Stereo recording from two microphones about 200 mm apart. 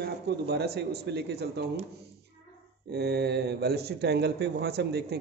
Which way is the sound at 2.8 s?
55° right (ahead or behind).